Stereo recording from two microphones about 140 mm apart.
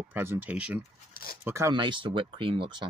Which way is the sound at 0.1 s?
15° right (ahead or behind).